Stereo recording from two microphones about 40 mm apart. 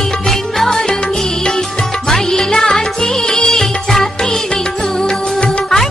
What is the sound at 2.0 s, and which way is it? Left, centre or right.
Music, centre.